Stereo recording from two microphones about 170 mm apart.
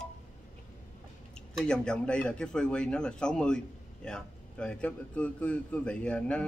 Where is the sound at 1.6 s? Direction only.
5° left (ahead or behind).